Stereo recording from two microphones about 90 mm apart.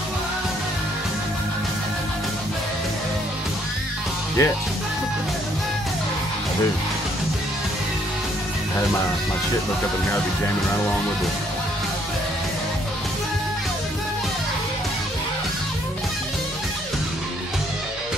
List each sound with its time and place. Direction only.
4.4 s speech: 35° left (ahead or behind)